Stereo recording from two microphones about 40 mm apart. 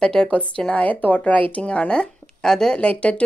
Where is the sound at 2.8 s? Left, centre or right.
Left.